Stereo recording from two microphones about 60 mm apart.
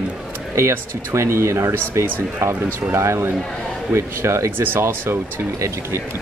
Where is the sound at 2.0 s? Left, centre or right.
Right.